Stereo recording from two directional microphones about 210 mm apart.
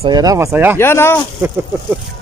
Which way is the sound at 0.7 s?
10° left (ahead or behind).